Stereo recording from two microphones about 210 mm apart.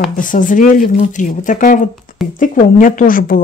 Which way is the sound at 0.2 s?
40° left (ahead or behind).